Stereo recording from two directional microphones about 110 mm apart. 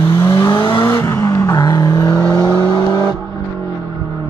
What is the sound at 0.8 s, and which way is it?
Vehicle, 25° left (ahead or behind).